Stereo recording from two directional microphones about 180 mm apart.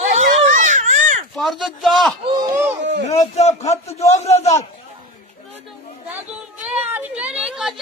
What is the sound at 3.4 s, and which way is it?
A man's voice, 35° left (ahead or behind).